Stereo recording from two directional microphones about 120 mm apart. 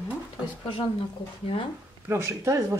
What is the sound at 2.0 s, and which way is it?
Speech, 20° right (ahead or behind).